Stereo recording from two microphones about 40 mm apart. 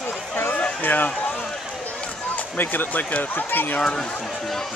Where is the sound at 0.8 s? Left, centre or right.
Left.